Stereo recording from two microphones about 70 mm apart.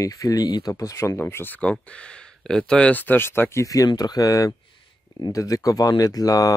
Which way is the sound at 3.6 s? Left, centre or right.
Left.